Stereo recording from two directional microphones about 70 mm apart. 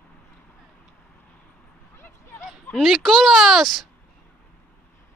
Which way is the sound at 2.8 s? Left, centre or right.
Centre.